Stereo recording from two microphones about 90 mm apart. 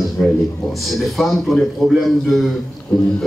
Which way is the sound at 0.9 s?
Centre (ahead or behind).